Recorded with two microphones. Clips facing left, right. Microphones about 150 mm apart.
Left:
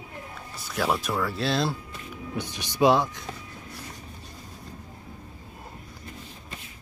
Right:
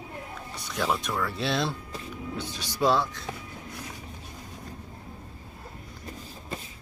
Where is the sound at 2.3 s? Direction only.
15° left (ahead or behind).